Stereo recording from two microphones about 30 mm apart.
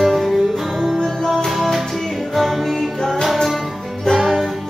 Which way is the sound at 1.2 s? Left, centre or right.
Centre.